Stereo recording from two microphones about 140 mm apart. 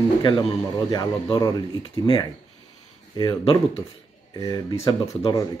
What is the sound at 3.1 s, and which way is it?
Speech, 30° left (ahead or behind).